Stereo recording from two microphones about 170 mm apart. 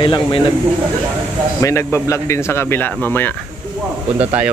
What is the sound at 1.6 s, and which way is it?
A man's voice, 15° left (ahead or behind).